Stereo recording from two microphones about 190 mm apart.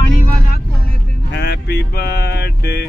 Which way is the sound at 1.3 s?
60° left (ahead or behind).